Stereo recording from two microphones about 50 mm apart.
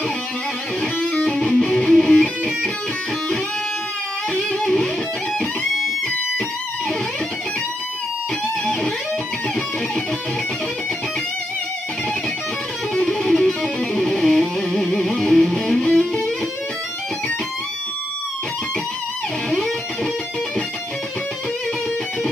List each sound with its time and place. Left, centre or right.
1.2 s music: centre
4.5 s music: centre
5.4 s music: centre
13.0 s music: centre
13.9 s music: centre